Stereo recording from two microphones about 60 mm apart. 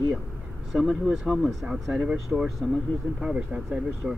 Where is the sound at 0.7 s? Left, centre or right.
Centre.